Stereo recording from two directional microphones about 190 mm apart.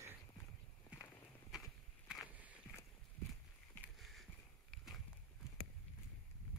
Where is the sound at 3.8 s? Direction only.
Centre (ahead or behind).